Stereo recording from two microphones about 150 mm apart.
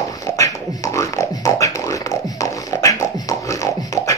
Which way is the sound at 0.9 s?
20° left (ahead or behind).